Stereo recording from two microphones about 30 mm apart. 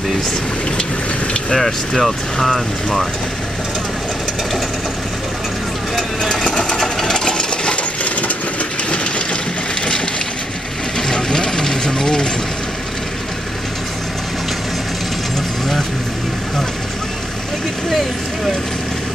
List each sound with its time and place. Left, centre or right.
2.0 s speech: centre
6.3 s sewing machine: centre
6.8 s a sound: centre
7.7 s coin: left
11.0 s mechanisms: left